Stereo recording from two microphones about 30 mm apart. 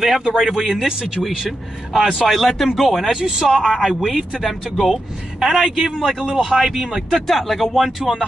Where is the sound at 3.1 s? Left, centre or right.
Right.